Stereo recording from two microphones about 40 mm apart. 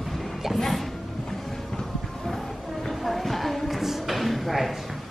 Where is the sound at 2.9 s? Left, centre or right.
Centre.